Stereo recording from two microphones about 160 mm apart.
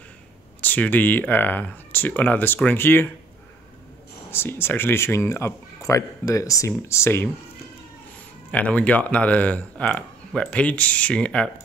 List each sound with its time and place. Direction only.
0.6 s speech: 10° left (ahead or behind)
4.3 s speech: 15° left (ahead or behind)
8.5 s speech: 10° left (ahead or behind)